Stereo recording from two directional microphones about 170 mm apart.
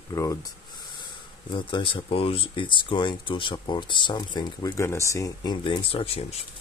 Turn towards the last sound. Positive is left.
turn(degrees=35)  # may be behind; listen again after turning